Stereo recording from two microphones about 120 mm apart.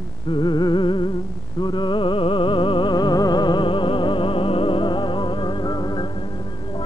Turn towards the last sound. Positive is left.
turn(degrees=35)  # may be behind; listen again after turning